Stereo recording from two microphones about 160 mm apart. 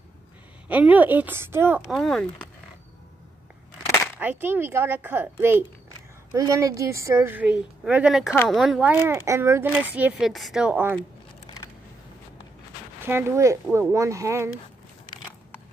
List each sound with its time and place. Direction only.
0.7 s speech: 10° right (ahead or behind)
1.9 s speech: centre (ahead or behind)
4.2 s speech: 10° right (ahead or behind)
11.4 s a sound: 25° left (ahead or behind)
13.0 s speech: 15° right (ahead or behind)